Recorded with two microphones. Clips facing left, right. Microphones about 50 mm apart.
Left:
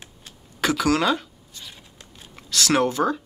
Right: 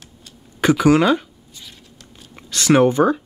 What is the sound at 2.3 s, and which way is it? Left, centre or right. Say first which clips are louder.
Speech: right 6 dB; centre.